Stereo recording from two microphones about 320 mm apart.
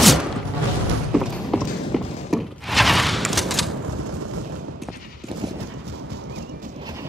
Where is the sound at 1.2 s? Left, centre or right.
Centre.